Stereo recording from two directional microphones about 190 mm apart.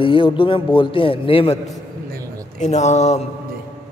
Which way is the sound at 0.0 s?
25° left (ahead or behind).